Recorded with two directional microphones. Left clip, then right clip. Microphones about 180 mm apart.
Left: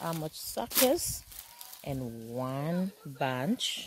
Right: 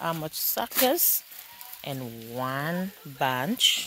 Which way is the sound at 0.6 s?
15° right (ahead or behind).